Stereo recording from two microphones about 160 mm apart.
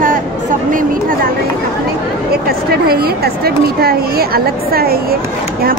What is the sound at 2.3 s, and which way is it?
A woman's voice, 75° right (ahead or behind).